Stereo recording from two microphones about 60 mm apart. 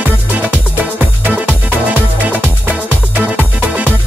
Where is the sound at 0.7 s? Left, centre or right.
Right.